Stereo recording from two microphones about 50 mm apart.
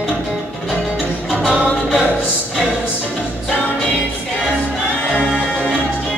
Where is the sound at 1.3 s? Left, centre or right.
Right.